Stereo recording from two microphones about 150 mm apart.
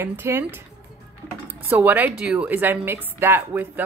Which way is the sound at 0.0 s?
15° right (ahead or behind).